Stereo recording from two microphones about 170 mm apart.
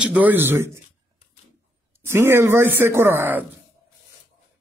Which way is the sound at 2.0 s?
15° right (ahead or behind).